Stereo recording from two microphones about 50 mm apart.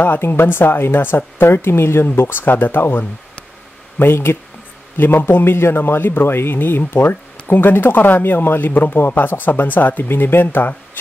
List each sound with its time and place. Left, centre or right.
0.0 s a man's voice: left